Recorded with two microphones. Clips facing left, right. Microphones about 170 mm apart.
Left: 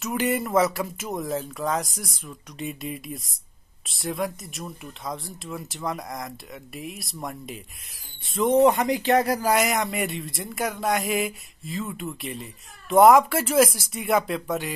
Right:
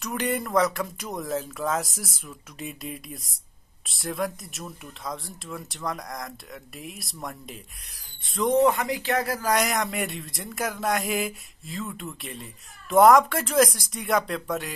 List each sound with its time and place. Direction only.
0.0 s speech: 5° left (ahead or behind)
9.5 s speech: centre (ahead or behind)